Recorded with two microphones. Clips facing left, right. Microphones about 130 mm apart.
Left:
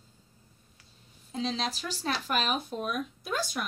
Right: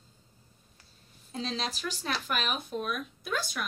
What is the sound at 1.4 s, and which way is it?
Speech, 25° left (ahead or behind).